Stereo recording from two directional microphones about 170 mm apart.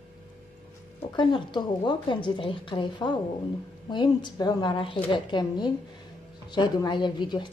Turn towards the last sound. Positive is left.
turn(degrees=25)  # may be behind; listen again after turning